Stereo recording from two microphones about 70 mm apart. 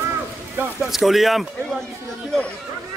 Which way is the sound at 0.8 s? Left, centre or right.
Centre.